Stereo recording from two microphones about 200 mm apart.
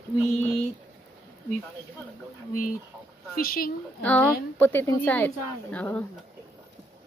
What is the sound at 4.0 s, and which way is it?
A woman's voice, 10° left (ahead or behind).